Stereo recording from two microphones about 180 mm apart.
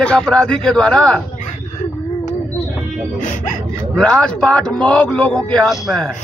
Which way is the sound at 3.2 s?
45° left (ahead or behind).